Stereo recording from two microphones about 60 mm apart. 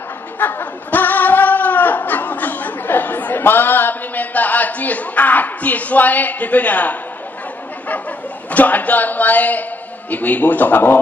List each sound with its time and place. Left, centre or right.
0.4 s music: left
8.5 s a man's voice: left